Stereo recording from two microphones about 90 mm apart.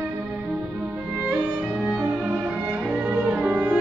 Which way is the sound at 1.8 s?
10° right (ahead or behind).